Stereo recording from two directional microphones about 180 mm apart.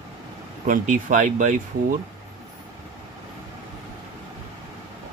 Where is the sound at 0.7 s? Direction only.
45° right (ahead or behind).